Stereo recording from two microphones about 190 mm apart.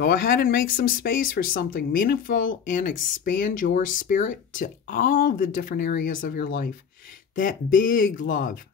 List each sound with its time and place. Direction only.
0.0 s speech: 50° left (ahead or behind)